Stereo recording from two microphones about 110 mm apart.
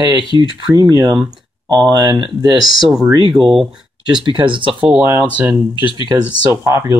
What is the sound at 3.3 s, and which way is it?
Speech, centre (ahead or behind).